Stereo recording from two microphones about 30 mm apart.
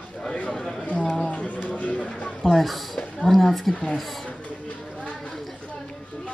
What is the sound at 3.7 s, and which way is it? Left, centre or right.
Speech, left.